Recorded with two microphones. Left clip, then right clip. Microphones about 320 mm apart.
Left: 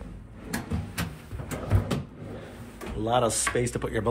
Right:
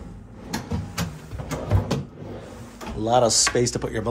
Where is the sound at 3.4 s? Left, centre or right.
Centre.